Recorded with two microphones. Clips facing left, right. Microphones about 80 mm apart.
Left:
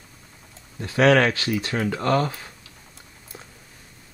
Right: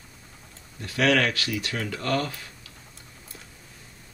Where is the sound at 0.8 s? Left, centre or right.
Left.